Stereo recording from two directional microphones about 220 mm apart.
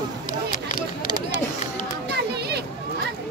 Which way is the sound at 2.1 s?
50° right (ahead or behind).